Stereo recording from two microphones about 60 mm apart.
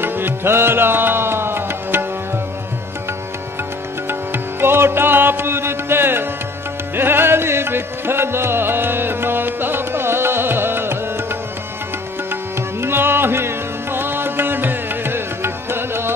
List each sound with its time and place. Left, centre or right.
0.0 s music: right
4.1 s music: right
12.8 s music: right